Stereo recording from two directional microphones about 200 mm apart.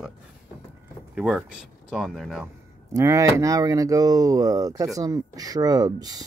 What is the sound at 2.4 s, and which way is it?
Speech, 15° right (ahead or behind).